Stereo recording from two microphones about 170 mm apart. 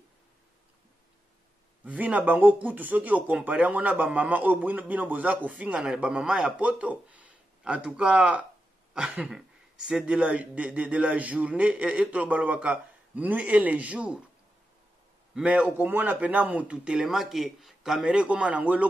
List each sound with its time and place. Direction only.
1.9 s speech: 10° right (ahead or behind)
15.3 s a man's voice: 10° right (ahead or behind)